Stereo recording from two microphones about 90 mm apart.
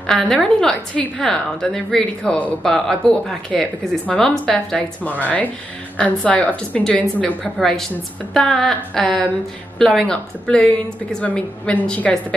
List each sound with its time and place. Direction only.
0.0 s a woman's voice: 5° left (ahead or behind)
7.5 s a woman's voice: 5° left (ahead or behind)